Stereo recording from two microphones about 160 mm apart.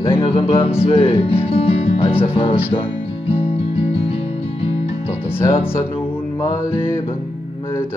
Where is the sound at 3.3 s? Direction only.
35° left (ahead or behind).